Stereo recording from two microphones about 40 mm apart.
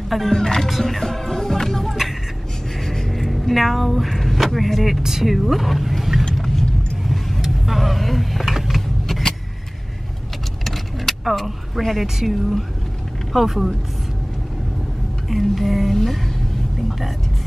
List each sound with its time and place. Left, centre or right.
0.1 s music: centre
0.7 s speech: centre
2.8 s a sound: centre
5.0 s speech: centre
7.1 s vehicle: centre
9.0 s vehicle: centre
10.6 s vehicle: centre
12.2 s a sound: centre
15.2 s a sound: centre